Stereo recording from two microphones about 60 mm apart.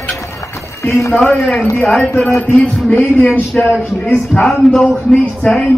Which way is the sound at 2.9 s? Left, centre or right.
Left.